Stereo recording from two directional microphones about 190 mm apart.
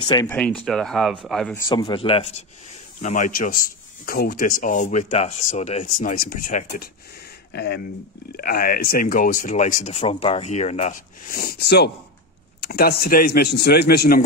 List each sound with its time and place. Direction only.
0.0 s speech: 20° left (ahead or behind)
0.3 s speech: 5° left (ahead or behind)
1.5 s speech: 20° left (ahead or behind)
3.0 s a man's voice: 40° left (ahead or behind)
7.5 s a man's voice: 60° left (ahead or behind)
8.3 s a man's voice: 50° left (ahead or behind)